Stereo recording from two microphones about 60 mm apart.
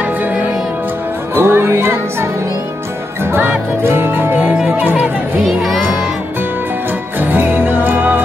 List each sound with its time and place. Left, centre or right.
0.0 s music: right
1.3 s music: right
3.3 s music: right
5.4 s music: centre
7.2 s music: right